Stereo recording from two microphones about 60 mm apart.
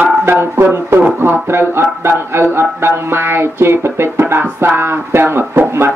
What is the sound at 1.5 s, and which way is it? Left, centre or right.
Speech, right.